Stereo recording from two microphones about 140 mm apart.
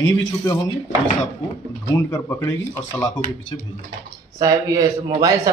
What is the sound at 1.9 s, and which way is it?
Speech, 20° left (ahead or behind).